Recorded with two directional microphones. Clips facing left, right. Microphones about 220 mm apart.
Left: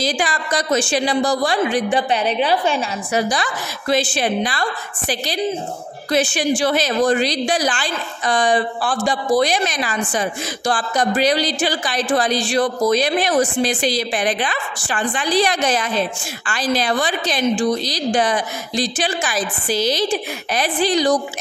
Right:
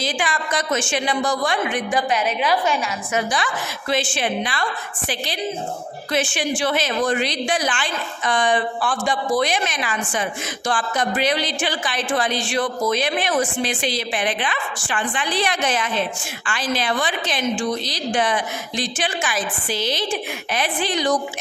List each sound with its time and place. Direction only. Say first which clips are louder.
0.0 s speech: left 3 dB; 35° left (ahead or behind)